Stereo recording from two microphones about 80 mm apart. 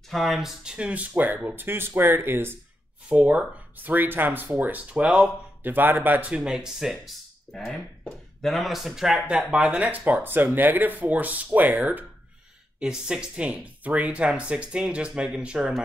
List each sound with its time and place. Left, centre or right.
0.1 s speech: centre; by 2.5 s right
3.1 s speech: centre
5.6 s speech: right; by 7.0 s centre
8.4 s speech: centre; by 12.1 s right
12.7 s speech: centre